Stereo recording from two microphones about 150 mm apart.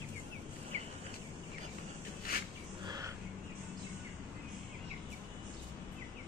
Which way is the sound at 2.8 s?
30° right (ahead or behind).